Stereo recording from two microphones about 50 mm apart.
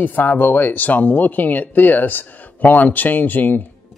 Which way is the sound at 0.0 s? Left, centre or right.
Left.